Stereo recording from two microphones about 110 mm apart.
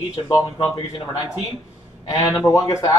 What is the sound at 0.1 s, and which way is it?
Speech, 30° left (ahead or behind).